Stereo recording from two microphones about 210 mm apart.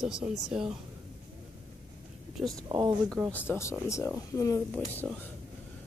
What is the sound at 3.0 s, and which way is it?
Speech, 5° right (ahead or behind).